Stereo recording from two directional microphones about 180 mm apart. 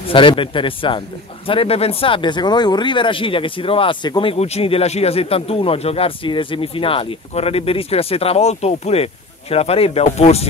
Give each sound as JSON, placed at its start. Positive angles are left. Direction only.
{"t": 0.1, "sound": "speech", "side_deg": 30}